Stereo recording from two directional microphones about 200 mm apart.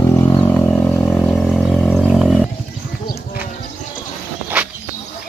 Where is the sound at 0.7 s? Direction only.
Centre (ahead or behind).